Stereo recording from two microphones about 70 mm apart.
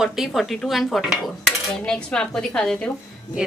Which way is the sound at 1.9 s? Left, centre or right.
Centre.